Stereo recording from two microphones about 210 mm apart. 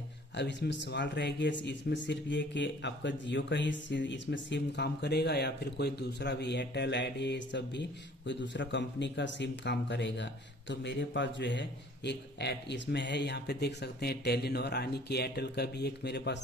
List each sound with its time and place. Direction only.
0.4 s speech: 55° left (ahead or behind)